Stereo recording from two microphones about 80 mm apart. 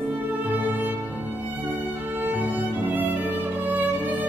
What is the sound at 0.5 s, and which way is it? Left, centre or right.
Music, right.